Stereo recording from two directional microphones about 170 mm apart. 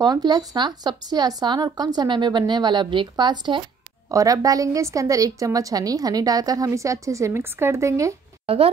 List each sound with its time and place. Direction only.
0.0 s a woman's voice: 25° right (ahead or behind)
8.5 s a woman's voice: 35° right (ahead or behind)